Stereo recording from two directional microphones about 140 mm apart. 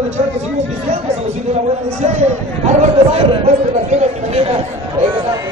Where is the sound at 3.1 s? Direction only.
45° right (ahead or behind).